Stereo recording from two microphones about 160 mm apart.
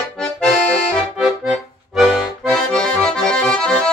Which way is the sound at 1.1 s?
5° right (ahead or behind).